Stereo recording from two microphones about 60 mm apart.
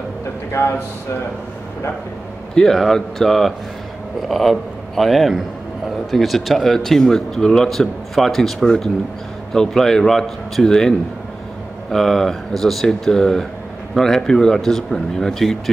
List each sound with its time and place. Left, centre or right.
0.6 s speech: left
2.5 s a man's voice: centre